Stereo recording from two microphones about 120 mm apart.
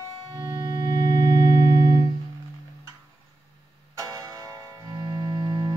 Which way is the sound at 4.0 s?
30° right (ahead or behind).